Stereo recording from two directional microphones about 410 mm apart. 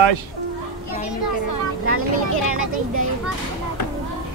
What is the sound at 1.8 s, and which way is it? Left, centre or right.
Vehicle, right.